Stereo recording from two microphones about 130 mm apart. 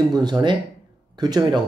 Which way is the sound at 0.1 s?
35° right (ahead or behind).